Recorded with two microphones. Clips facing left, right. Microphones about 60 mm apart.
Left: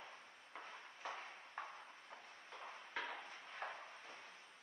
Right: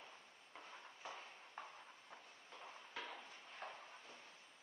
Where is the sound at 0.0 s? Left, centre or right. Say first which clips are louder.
Left 3 dB; left.